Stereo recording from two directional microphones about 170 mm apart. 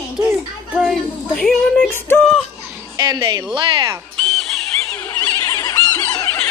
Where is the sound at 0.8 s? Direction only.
Centre (ahead or behind).